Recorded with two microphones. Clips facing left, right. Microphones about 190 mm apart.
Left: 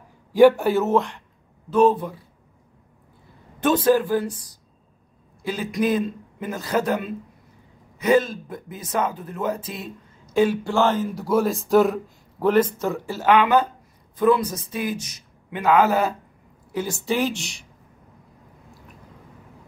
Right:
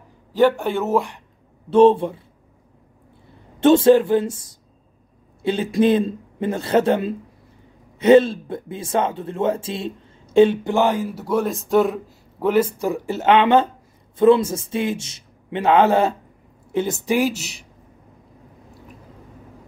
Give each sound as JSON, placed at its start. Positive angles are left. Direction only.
{"t": 0.3, "sound": "a man's voice", "side_deg": 10}
{"t": 0.9, "sound": "speech", "side_deg": -15}
{"t": 1.7, "sound": "speech", "side_deg": -30}
{"t": 3.5, "sound": "speech", "side_deg": -25}
{"t": 12.7, "sound": "speech", "side_deg": -15}